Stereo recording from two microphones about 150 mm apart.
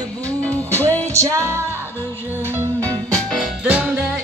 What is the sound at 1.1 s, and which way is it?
Music, 20° right (ahead or behind).